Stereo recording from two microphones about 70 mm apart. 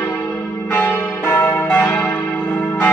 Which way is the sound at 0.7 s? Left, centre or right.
Left.